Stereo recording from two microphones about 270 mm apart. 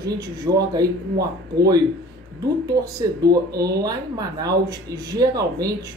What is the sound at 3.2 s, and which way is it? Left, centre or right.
Speech, centre.